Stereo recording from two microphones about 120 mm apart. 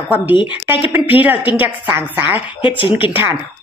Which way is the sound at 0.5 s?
15° right (ahead or behind).